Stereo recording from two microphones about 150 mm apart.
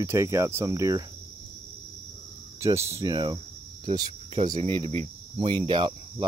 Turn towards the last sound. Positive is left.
turn(degrees=-35)  # may be behind; listen again after turning